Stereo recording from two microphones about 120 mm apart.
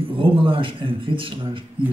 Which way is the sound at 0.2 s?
45° right (ahead or behind).